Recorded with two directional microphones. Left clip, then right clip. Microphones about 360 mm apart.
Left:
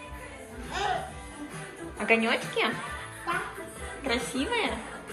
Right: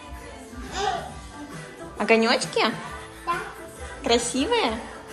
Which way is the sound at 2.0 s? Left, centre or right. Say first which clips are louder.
Right 5 dB; centre.